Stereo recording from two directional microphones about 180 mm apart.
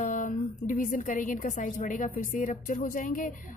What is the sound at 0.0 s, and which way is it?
A woman's voice, 45° left (ahead or behind).